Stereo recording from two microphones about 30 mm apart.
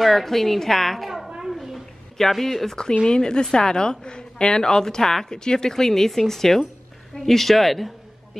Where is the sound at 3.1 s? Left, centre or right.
Left.